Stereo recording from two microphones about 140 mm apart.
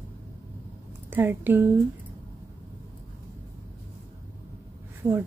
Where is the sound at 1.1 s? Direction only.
15° right (ahead or behind).